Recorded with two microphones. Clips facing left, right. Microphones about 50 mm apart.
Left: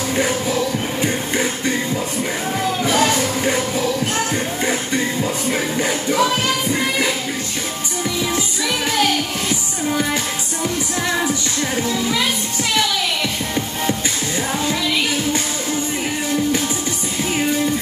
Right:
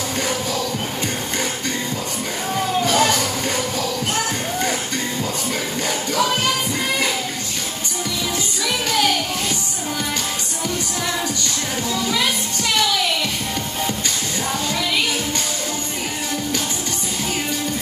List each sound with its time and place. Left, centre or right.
0.1 s music: left
2.8 s music: left